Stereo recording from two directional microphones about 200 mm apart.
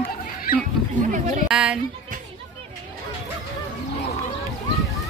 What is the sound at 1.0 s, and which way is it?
Speech, 40° right (ahead or behind).